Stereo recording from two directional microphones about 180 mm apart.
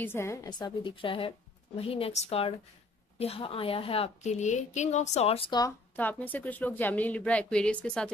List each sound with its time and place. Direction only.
0.0 s a woman's voice: 15° left (ahead or behind)
5.9 s a woman's voice: 10° left (ahead or behind)